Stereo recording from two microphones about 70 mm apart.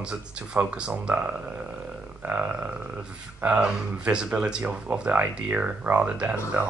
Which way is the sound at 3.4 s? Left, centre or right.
Centre.